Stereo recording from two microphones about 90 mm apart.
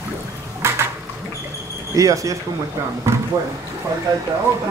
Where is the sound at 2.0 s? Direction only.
40° right (ahead or behind).